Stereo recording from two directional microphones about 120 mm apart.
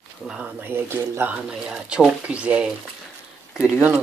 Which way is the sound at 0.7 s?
20° right (ahead or behind).